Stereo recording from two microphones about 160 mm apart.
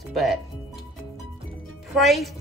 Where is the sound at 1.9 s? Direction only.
Centre (ahead or behind).